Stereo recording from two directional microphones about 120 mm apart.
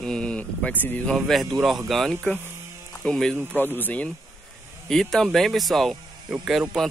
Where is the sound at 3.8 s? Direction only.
15° left (ahead or behind).